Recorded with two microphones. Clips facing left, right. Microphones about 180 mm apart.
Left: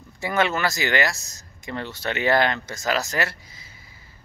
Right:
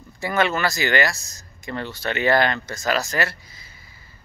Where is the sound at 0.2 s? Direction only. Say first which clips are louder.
Right 1 dB; 20° left (ahead or behind).